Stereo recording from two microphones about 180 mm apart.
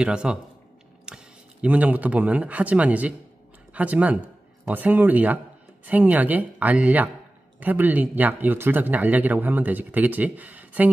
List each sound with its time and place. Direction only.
0.0 s a man's voice: 5° right (ahead or behind)